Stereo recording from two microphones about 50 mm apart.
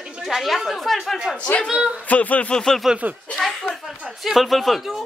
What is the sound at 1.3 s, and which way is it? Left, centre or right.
Speech, left.